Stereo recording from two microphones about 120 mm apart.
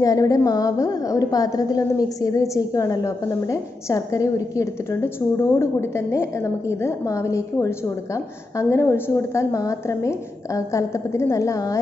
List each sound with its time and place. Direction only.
0.0 s a woman's voice: 30° left (ahead or behind)